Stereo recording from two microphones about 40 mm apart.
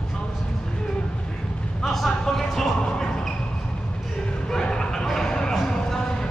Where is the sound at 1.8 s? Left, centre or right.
Centre.